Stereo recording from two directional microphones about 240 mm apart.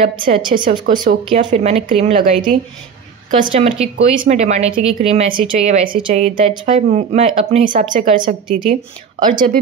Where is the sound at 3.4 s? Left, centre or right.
Right.